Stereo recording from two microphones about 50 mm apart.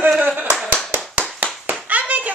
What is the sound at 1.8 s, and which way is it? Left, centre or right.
Hands, right.